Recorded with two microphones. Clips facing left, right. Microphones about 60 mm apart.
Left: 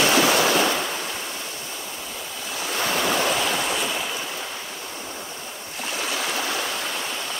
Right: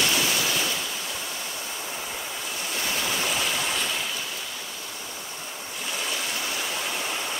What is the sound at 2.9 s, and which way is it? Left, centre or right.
Stream, left.